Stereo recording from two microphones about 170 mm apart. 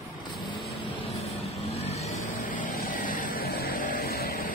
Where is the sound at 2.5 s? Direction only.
55° left (ahead or behind).